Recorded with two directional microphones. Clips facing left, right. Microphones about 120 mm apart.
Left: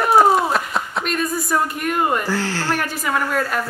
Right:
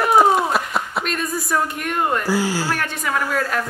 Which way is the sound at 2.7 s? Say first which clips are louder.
Left 1 dB; 5° left (ahead or behind).